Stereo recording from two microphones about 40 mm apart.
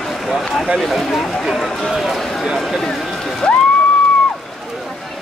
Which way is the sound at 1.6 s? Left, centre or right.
Centre.